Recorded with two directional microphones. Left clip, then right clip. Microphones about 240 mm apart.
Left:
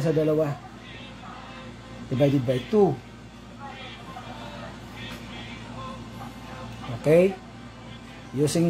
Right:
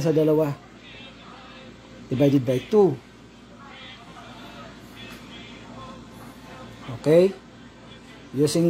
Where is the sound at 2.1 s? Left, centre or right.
Right.